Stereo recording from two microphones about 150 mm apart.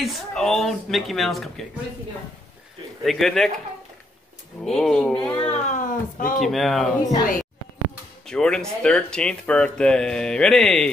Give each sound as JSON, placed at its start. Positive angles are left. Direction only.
{"t": 0.0, "sound": "speech", "side_deg": 0}
{"t": 3.0, "sound": "speech", "side_deg": 0}
{"t": 4.6, "sound": "speech", "side_deg": 0}
{"t": 5.5, "sound": "speech", "side_deg": 55}
{"t": 6.4, "sound": "speech", "side_deg": 0}
{"t": 7.0, "sound": "speech", "side_deg": 25}
{"t": 8.3, "sound": "speech", "side_deg": 5}